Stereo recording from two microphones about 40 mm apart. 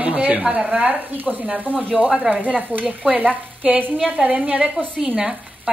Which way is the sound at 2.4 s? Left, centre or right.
Right.